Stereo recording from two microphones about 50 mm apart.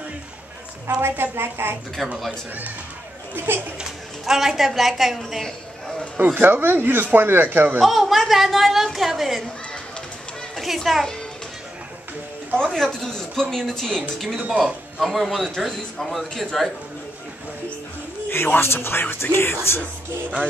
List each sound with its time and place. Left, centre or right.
1.0 s speech: right
2.0 s a woman's voice: centre
3.3 s speech: right
4.3 s a woman's voice: centre
6.1 s speech: right
6.5 s speech: right
7.8 s a woman's voice: centre
10.5 s a child's voice: centre
12.7 s a woman's voice: centre
18.3 s speech: left